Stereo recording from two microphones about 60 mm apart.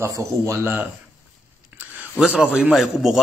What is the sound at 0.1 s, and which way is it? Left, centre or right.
Speech, right.